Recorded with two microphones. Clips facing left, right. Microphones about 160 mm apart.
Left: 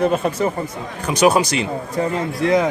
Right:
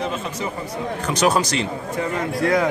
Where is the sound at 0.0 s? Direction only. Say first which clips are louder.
Left 8 dB; 55° left (ahead or behind).